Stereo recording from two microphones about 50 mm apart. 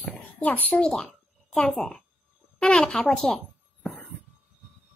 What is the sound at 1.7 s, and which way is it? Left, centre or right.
A child's voice, centre.